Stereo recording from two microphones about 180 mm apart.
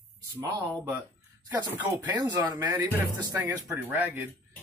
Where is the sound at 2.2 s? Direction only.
20° right (ahead or behind).